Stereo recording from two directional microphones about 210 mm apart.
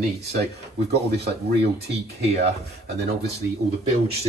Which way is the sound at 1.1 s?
50° right (ahead or behind).